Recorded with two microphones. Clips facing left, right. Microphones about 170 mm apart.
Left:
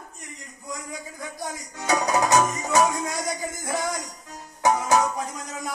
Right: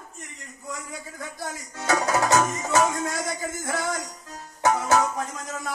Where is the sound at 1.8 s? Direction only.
15° left (ahead or behind).